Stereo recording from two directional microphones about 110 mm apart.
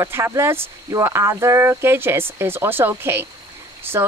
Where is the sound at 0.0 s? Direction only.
25° right (ahead or behind).